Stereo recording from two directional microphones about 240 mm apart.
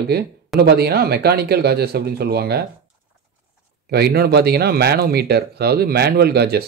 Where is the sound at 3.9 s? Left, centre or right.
Right.